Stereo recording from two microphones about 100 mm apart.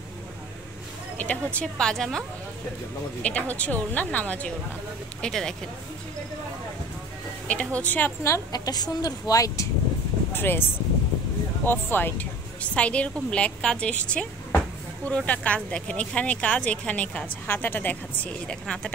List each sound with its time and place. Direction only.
1.2 s speech: 15° left (ahead or behind)
3.3 s speech: 15° left (ahead or behind)
7.4 s speech: 15° left (ahead or behind)
8.3 s speech: 40° left (ahead or behind)
10.3 s speech: 20° left (ahead or behind)
11.6 s speech: 20° left (ahead or behind)